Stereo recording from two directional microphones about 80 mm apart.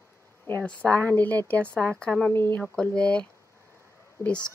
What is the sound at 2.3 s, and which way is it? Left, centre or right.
Speech, left.